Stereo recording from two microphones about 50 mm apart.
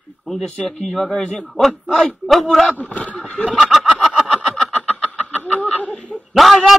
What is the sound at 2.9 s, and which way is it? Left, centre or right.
Speech, left.